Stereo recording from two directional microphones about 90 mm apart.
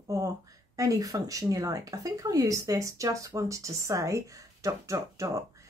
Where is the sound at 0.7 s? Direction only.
40° right (ahead or behind).